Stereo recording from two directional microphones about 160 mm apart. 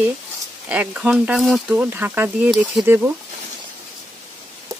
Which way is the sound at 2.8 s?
15° right (ahead or behind).